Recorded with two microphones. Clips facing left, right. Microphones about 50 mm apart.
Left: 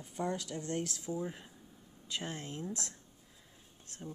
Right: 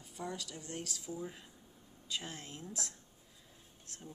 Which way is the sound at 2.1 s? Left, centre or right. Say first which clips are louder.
Left 3 dB; left.